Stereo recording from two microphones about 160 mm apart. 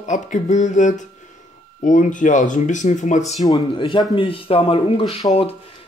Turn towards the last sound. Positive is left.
turn(degrees=35)  # may be behind; listen again after turning